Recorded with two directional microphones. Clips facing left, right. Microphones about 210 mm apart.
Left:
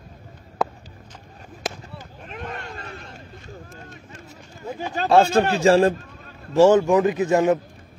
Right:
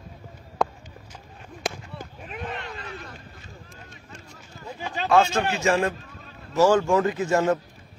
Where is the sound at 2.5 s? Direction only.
45° left (ahead or behind).